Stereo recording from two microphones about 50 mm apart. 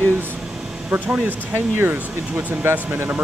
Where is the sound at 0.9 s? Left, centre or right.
Right.